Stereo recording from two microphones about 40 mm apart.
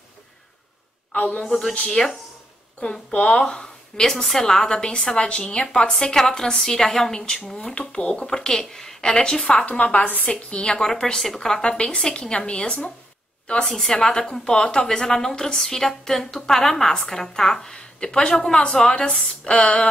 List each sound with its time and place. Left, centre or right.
1.1 s a woman's voice: left
1.4 s a woman's voice: centre
3.1 s a woman's voice: left
3.3 s speech: left
4.1 s a woman's voice: centre
9.9 s a woman's voice: left
10.8 s a woman's voice: centre
13.5 s a woman's voice: centre
19.4 s speech: left